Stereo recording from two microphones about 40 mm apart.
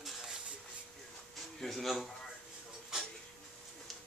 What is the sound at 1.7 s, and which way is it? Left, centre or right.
Speech, centre.